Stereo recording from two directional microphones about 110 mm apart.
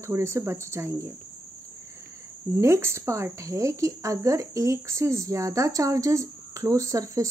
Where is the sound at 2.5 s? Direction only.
25° right (ahead or behind).